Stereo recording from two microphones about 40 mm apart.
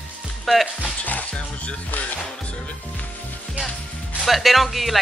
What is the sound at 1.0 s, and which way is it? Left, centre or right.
Music, left.